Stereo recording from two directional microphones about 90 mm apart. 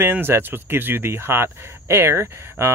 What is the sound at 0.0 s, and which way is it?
Speech, 25° right (ahead or behind).